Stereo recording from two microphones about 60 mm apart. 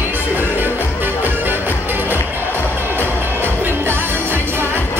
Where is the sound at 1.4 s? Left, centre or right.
Right.